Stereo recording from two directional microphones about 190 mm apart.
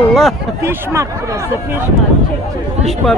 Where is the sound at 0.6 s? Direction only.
15° right (ahead or behind).